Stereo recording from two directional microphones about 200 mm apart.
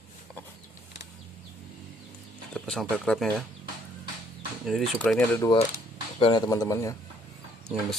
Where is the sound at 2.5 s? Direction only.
5° left (ahead or behind).